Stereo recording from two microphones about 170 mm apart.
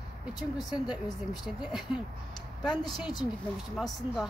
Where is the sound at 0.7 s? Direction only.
5° right (ahead or behind).